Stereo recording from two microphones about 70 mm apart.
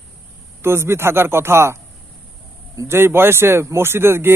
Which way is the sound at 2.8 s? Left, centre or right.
Right.